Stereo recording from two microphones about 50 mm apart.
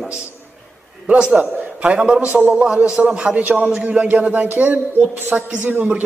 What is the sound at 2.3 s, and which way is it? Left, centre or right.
A man's voice, right.